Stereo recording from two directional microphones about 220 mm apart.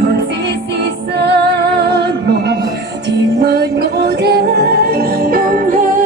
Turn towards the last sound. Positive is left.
turn(degrees=-40)  # may be behind; listen again after turning